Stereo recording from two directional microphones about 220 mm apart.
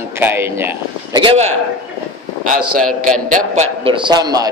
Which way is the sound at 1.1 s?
25° right (ahead or behind).